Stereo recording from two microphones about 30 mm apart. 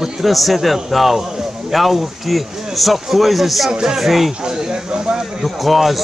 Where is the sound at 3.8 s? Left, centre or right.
Centre.